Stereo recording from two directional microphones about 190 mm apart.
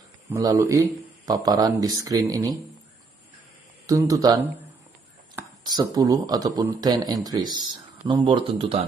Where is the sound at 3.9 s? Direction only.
20° right (ahead or behind).